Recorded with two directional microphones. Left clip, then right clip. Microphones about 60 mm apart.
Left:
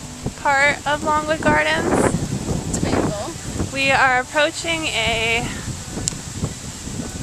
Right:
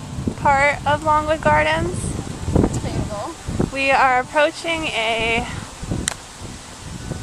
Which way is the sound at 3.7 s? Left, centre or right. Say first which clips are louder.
Even; centre.